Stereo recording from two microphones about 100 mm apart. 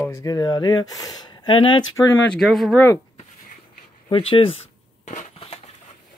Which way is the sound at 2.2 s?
5° left (ahead or behind).